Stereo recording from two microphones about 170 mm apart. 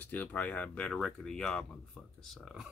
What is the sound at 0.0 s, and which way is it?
Speech, 10° left (ahead or behind).